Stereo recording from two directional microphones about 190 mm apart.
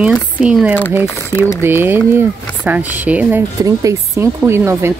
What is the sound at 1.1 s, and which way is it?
Speech, 15° left (ahead or behind).